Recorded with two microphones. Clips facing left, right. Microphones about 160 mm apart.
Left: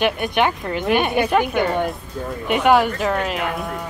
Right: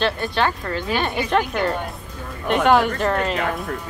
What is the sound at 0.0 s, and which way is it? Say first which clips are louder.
Speech: left 2 dB; 20° left (ahead or behind).